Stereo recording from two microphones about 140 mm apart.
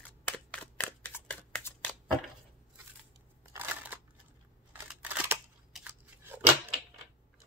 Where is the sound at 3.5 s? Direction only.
15° right (ahead or behind).